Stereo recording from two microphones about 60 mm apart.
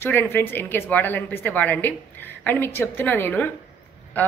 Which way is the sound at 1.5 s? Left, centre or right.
Left.